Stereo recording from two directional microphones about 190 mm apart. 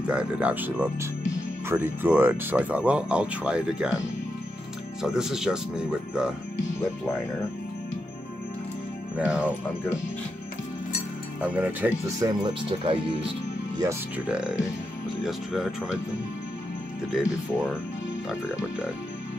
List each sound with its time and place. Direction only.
0.0 s speech: 5° right (ahead or behind)
5.0 s speech: centre (ahead or behind)
9.2 s speech: 5° right (ahead or behind)
11.4 s speech: 5° right (ahead or behind)
12.2 s speech: 25° right (ahead or behind)
13.7 s speech: 10° right (ahead or behind)
17.1 s speech: 5° right (ahead or behind)